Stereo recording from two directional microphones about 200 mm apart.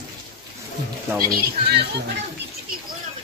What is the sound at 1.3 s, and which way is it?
Speech, 55° right (ahead or behind).